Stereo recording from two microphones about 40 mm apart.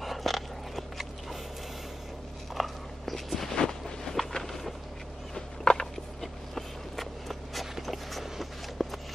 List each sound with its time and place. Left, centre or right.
0.0 s biting: centre
2.5 s walk: centre
3.4 s a sound: centre
6.2 s walk: centre